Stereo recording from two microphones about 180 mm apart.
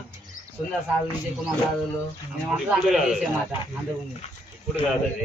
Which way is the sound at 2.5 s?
5° right (ahead or behind).